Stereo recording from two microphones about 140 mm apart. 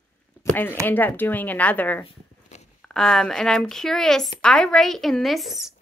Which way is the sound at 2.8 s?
5° left (ahead or behind).